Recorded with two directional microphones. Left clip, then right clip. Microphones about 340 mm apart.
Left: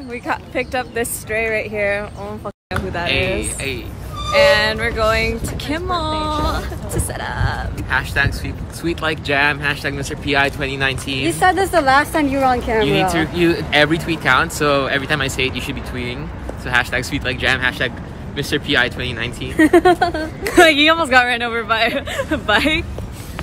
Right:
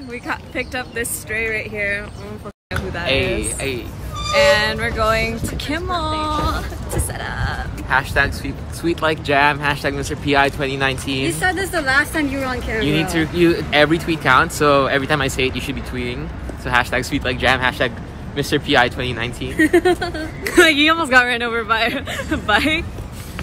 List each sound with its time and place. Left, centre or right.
0.1 s speech: centre
3.1 s speech: centre
7.9 s speech: centre
11.2 s speech: centre
13.1 s speech: centre
19.5 s speech: centre
20.5 s speech: centre